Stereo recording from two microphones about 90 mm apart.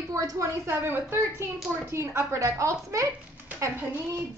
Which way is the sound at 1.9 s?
30° right (ahead or behind).